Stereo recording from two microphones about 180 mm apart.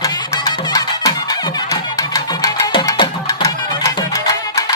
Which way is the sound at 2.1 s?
20° left (ahead or behind).